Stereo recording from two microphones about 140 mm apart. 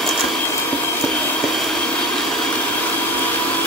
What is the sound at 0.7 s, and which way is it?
Vacuum cleaner, 10° left (ahead or behind).